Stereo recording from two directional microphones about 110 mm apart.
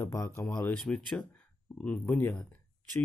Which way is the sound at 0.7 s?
5° left (ahead or behind).